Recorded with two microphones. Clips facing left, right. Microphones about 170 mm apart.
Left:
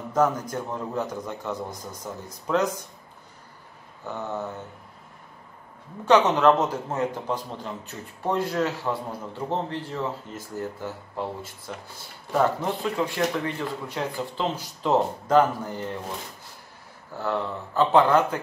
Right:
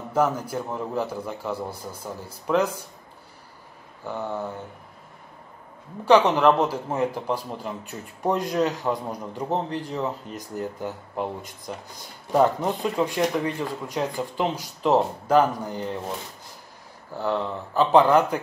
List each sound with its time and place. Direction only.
0.1 s a man's voice: 10° right (ahead or behind)
4.0 s a man's voice: 10° right (ahead or behind)
6.0 s a man's voice: 10° right (ahead or behind)
17.2 s a man's voice: 15° right (ahead or behind)